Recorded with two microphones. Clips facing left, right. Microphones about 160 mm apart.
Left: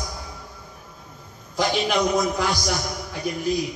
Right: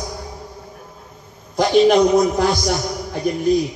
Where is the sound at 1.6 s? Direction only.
35° right (ahead or behind).